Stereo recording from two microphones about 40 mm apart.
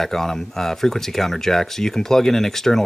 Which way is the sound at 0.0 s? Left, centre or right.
Centre.